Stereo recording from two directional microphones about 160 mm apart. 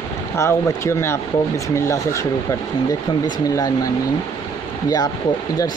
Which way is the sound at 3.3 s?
25° left (ahead or behind).